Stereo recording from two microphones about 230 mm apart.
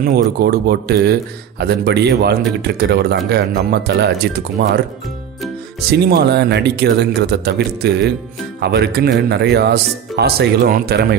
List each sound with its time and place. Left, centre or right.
0.0 s speech: right
5.9 s speech: right